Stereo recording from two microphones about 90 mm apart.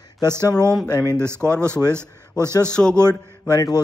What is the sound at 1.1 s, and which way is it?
Speech, 30° right (ahead or behind).